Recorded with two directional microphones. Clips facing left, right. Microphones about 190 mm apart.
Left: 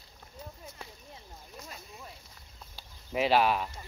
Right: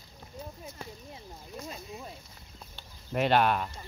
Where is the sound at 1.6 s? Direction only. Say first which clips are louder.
Right 6 dB; 25° right (ahead or behind).